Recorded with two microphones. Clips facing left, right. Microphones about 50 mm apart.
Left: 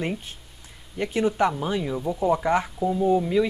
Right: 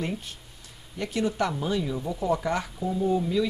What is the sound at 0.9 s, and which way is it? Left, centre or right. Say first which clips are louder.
Speech: left 4 dB; left.